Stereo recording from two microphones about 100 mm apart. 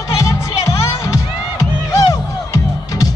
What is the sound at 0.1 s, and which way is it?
Music, 30° left (ahead or behind).